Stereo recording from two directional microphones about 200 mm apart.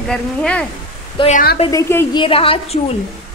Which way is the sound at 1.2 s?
25° left (ahead or behind).